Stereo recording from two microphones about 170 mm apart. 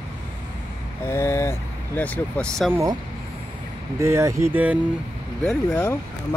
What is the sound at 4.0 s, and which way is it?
Speech, 15° right (ahead or behind).